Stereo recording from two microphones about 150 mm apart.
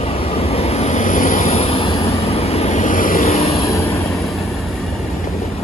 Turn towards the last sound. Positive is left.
turn(degrees=45)  # may be behind; listen again after turning